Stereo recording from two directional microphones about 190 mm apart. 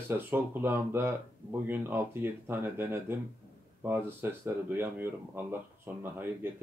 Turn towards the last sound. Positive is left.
turn(degrees=-10)  # may be behind; listen again after turning